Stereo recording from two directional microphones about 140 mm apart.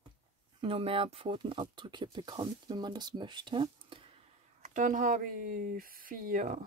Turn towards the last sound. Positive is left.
turn(degrees=-70)  # may be behind; listen again after turning